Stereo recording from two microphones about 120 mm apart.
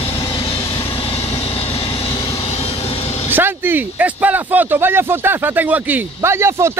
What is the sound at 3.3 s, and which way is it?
Speech, 15° right (ahead or behind).